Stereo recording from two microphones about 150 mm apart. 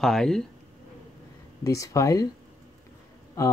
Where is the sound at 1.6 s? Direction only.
20° left (ahead or behind).